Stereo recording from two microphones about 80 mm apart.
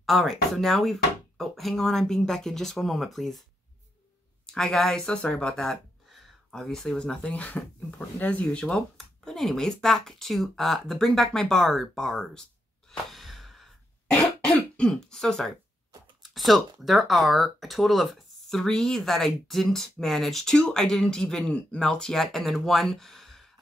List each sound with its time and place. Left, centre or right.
0.0 s speech: centre
4.5 s speech: centre
12.9 s a sound: centre
14.4 s throat clearing: centre
16.2 s speech: centre